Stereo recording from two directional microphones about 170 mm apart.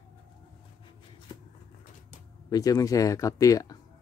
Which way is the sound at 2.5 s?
20° left (ahead or behind).